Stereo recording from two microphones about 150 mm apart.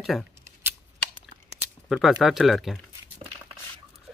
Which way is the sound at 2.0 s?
Centre (ahead or behind).